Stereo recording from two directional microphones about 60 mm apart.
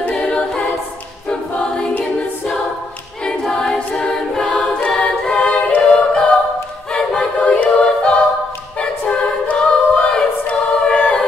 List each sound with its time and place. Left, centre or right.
0.0 s a capella: centre
1.3 s choir: centre
3.5 s a capella: centre
6.9 s choir: centre
8.7 s a capella: centre